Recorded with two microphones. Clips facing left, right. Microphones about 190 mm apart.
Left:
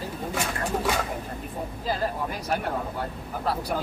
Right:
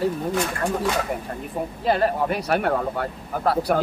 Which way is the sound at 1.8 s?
70° right (ahead or behind).